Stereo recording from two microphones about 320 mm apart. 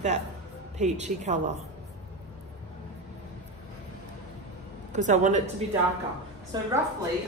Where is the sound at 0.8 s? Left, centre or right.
Right.